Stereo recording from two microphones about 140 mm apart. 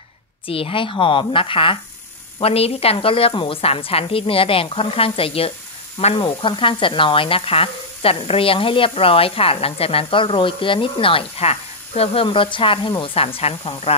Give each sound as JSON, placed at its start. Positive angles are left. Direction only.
{"t": 0.5, "sound": "a woman's voice", "side_deg": 40}
{"t": 6.2, "sound": "speech", "side_deg": 35}